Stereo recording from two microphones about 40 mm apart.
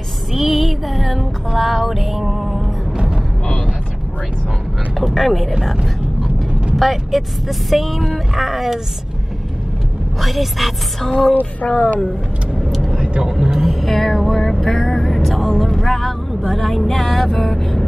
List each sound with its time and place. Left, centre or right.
0.3 s music: centre
4.9 s music: centre
6.8 s music: centre
10.2 s music: centre
11.6 s speech: left
13.0 s vehicle: right
13.3 s music: centre
15.6 s speech: centre